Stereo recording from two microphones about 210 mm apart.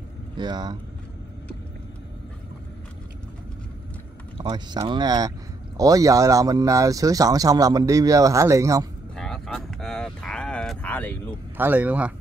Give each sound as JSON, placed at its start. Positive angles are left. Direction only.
{"t": 0.4, "sound": "speech", "side_deg": -20}
{"t": 4.4, "sound": "speech", "side_deg": -20}
{"t": 9.1, "sound": "a sound", "side_deg": 5}
{"t": 11.5, "sound": "speech", "side_deg": -10}